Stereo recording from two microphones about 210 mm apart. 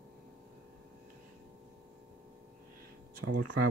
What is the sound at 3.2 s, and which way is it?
Speech, 75° right (ahead or behind).